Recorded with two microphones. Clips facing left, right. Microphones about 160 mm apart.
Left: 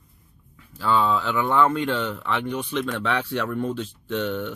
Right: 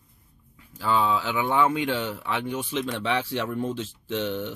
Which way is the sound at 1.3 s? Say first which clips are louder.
Left 4 dB; 60° left (ahead or behind).